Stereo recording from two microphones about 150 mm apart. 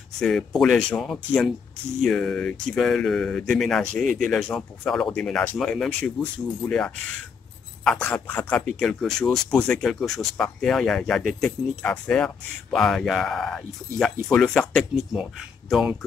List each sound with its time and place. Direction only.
0.2 s speech: 5° left (ahead or behind)